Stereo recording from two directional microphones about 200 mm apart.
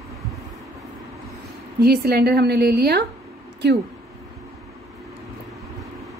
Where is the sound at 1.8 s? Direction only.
50° right (ahead or behind).